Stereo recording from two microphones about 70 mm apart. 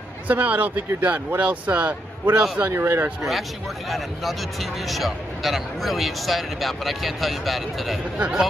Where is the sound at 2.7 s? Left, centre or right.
Right.